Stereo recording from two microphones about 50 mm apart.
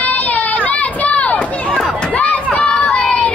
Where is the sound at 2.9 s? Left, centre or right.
Left.